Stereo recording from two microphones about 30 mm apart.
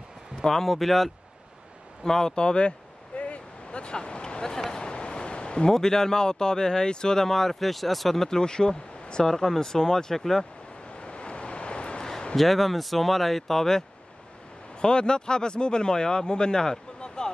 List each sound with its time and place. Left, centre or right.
0.4 s speech: centre
2.0 s speech: left
3.2 s a sound: left
5.7 s speech: centre
7.2 s speech: centre
8.2 s speech: left
11.0 s vehicle: left
12.0 s a sound: left
12.4 s speech: centre
14.8 s speech: left
17.0 s a sound: left